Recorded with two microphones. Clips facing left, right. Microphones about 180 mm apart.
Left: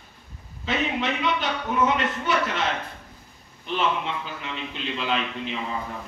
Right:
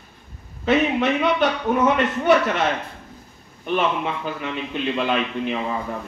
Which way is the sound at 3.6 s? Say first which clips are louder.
Right 4 dB; 55° right (ahead or behind).